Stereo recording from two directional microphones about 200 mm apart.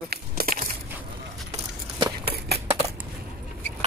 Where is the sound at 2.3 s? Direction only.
55° right (ahead or behind).